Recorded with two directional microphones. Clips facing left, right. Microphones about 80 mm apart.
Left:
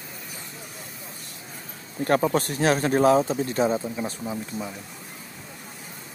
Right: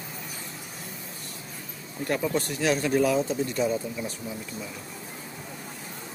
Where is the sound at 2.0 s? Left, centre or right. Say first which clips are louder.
Left 5 dB; left.